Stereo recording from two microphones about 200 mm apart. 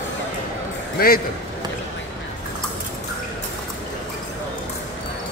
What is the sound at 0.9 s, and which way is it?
Speech, 50° left (ahead or behind).